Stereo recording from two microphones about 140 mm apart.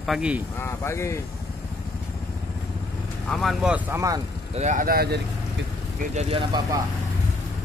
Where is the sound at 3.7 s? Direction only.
20° right (ahead or behind).